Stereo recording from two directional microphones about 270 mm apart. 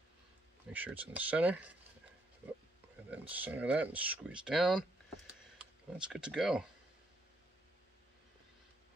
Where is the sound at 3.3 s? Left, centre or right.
Centre.